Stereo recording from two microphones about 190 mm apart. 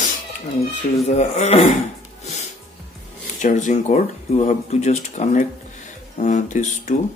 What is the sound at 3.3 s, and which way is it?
Speech, 40° left (ahead or behind).